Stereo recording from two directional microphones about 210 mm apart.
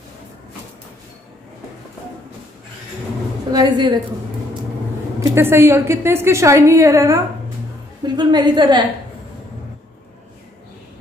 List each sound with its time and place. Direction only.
3.5 s a woman's voice: 20° right (ahead or behind)
5.2 s a woman's voice: 10° right (ahead or behind)